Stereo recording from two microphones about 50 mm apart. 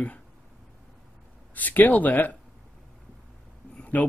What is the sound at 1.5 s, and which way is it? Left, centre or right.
Speech, left.